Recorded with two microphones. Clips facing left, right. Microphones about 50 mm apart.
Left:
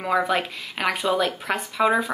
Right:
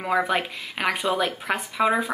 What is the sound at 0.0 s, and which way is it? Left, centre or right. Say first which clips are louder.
Speech: left 1 dB; centre.